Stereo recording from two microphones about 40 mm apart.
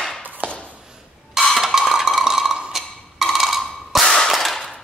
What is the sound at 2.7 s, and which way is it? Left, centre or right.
Wood block, centre.